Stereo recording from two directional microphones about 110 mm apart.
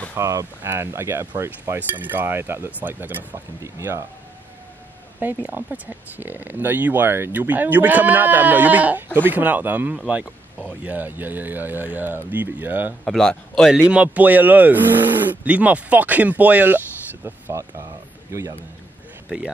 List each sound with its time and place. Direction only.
0.1 s speech: 30° right (ahead or behind)
5.2 s speech: 15° right (ahead or behind)
13.0 s a man's voice: 5° left (ahead or behind)
13.7 s speech: 10° right (ahead or behind); by 18.6 s 25° right (ahead or behind)
19.2 s speech: 5° right (ahead or behind)